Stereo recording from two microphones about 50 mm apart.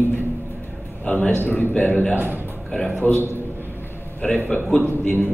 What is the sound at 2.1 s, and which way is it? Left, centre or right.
A man's voice, right.